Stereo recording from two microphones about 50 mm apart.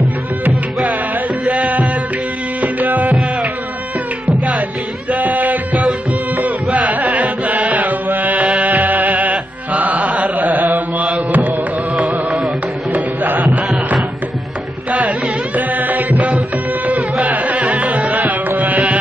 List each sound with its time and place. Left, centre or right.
1.5 s music: right
2.8 s music: right
4.3 s music: right
5.1 s music: right
6.9 s music: right
10.0 s carnatic music: right
11.3 s music: right
11.9 s music: centre
12.9 s music: right
14.9 s music: right
16.2 s music: centre
17.3 s music: right
17.6 s carnatic music: centre
18.6 s music: right